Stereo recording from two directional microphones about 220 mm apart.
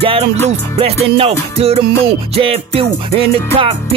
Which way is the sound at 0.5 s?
25° right (ahead or behind).